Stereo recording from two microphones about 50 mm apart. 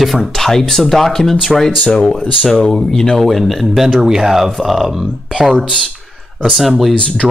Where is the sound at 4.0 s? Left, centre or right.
Centre.